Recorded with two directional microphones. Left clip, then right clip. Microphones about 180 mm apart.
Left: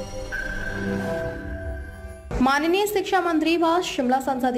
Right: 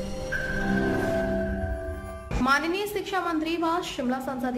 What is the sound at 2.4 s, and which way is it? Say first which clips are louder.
A woman's voice: left 4 dB; 25° left (ahead or behind).